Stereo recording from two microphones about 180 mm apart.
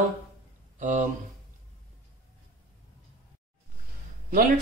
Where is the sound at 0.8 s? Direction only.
40° right (ahead or behind).